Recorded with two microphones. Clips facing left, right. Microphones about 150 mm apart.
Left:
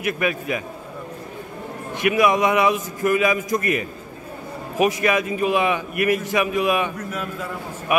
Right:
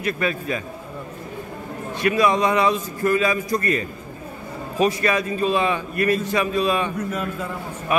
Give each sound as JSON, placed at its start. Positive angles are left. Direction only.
{"t": 0.0, "sound": "a man's voice", "side_deg": 15}
{"t": 2.0, "sound": "a man's voice", "side_deg": 15}
{"t": 7.9, "sound": "a man's voice", "side_deg": 15}